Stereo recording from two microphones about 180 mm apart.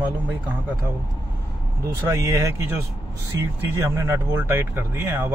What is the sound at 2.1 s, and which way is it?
Speech, 15° right (ahead or behind).